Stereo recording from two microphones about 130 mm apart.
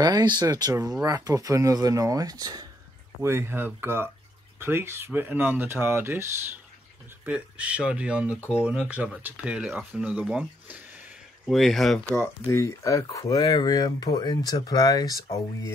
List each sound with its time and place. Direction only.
0.0 s speech: 30° right (ahead or behind); by 8.4 s 10° right (ahead or behind)
8.4 s speech: 15° left (ahead or behind)
8.6 s speech: 10° right (ahead or behind)
12.1 s speech: 20° left (ahead or behind)